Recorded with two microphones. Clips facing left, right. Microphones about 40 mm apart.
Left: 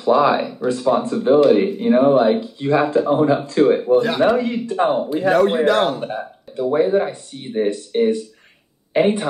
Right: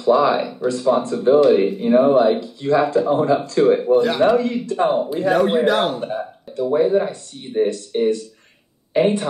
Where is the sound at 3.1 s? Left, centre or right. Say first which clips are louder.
Left 1 dB; centre.